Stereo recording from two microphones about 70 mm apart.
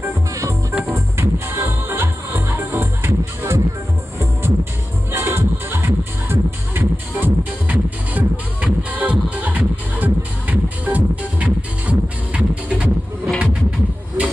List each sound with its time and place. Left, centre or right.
0.3 s music: right
5.1 s music: right; by 12.9 s centre
13.4 s vehicle: centre